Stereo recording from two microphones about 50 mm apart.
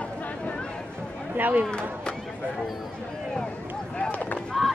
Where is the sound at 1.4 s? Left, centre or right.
Right.